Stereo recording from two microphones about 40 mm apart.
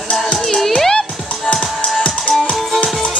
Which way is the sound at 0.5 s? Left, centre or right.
Centre.